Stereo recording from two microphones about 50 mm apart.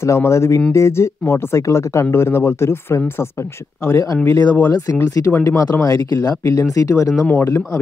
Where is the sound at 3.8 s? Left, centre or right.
Left.